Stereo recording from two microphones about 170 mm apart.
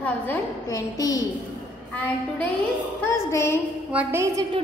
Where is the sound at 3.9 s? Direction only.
10° right (ahead or behind).